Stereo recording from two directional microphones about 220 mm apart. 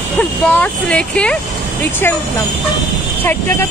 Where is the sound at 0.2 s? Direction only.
5° left (ahead or behind).